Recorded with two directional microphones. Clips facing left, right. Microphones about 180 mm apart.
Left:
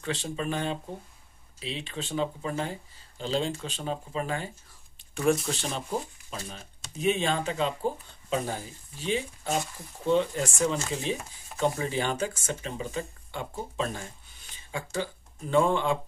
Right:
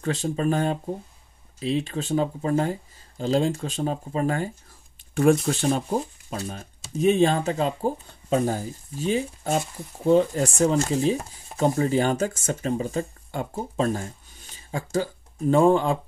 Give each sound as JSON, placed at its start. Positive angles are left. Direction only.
{"t": 0.0, "sound": "speech", "side_deg": -40}
{"t": 7.0, "sound": "speech", "side_deg": -40}